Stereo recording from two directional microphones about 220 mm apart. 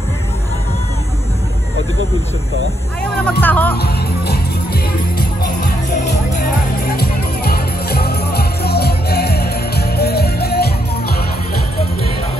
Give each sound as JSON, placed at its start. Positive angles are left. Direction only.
{"t": 3.0, "sound": "speech", "side_deg": 5}
{"t": 3.7, "sound": "speech", "side_deg": 45}
{"t": 6.8, "sound": "music", "side_deg": 45}